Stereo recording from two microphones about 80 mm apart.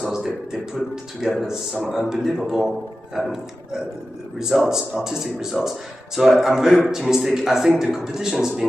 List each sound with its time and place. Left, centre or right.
0.0 s speech: centre
4.4 s speech: centre